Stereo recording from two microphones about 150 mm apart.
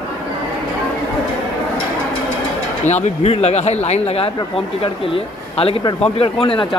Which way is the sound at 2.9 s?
45° left (ahead or behind).